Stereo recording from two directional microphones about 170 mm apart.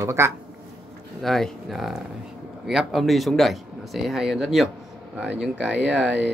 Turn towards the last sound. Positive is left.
turn(degrees=-5)  # may be behind; listen again after turning